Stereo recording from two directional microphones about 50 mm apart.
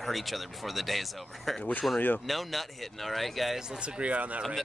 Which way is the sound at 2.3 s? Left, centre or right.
Centre.